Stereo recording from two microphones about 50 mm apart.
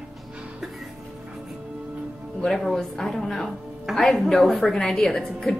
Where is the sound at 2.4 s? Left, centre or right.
Centre.